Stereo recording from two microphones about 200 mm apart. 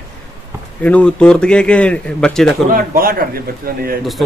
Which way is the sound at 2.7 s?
45° right (ahead or behind).